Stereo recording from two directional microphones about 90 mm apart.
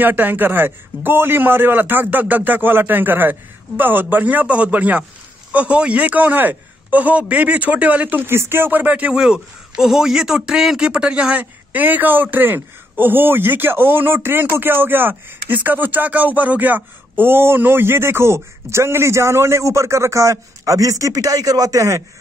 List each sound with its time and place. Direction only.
0.0 s a man's voice: 20° right (ahead or behind)